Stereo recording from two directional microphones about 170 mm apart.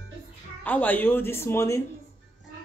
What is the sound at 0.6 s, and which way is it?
Speech, 10° left (ahead or behind).